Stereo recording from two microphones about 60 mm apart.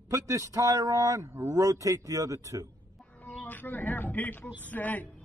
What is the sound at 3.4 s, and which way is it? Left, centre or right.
Speech, left.